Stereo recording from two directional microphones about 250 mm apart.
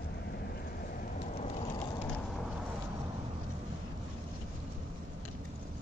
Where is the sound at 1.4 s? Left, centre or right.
Left.